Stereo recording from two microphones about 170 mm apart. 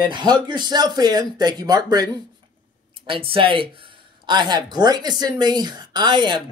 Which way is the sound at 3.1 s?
30° right (ahead or behind).